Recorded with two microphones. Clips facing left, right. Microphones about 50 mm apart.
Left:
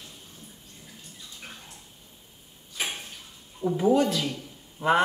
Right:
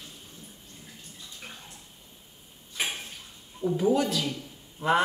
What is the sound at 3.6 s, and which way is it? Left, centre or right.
Speech, centre.